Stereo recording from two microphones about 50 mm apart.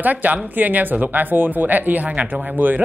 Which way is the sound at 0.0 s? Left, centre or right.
Right.